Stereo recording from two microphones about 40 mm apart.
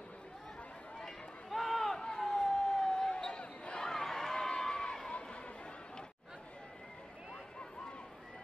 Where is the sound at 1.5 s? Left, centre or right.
Centre; by 3.8 s left.